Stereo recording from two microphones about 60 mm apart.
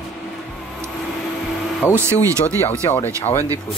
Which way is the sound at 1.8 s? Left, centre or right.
Left.